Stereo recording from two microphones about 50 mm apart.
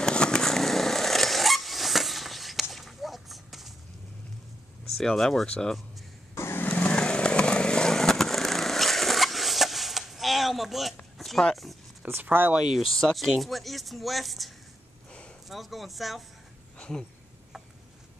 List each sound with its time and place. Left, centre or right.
0.0 s vehicle: centre
5.1 s speech: centre
6.3 s vehicle: left
6.6 s vehicle: left
6.9 s vehicle: centre
11.1 s a sound: centre
12.2 s speech: right
12.6 s speech: centre
16.7 s a sound: left